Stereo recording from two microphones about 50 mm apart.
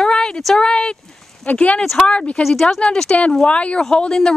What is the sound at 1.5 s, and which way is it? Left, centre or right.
Speech, left.